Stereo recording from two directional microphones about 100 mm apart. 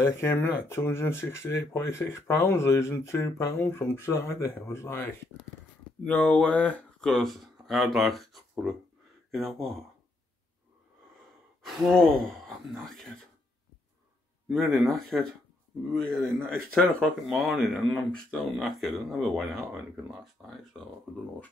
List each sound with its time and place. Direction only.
0.0 s speech: 25° left (ahead or behind)
6.0 s speech: 15° left (ahead or behind)
11.6 s speech: centre (ahead or behind)
14.5 s speech: centre (ahead or behind)